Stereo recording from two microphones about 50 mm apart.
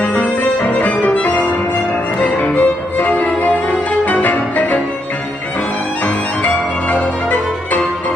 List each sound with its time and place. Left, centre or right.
0.0 s music: left
2.2 s violin: left
4.0 s music: left
6.4 s music: left